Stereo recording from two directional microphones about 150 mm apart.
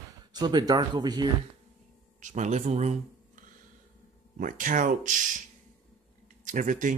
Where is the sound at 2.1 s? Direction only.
55° right (ahead or behind).